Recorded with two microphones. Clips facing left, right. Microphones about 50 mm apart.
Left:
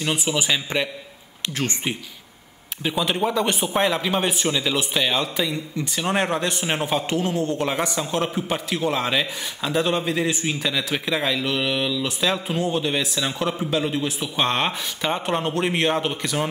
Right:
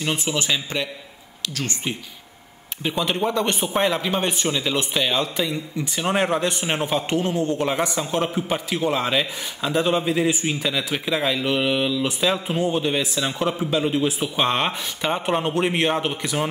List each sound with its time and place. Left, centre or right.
0.0 s speech: centre
1.5 s speech: left
2.8 s speech: centre